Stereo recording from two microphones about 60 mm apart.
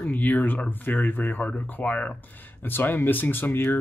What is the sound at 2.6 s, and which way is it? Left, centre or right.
Speech, left.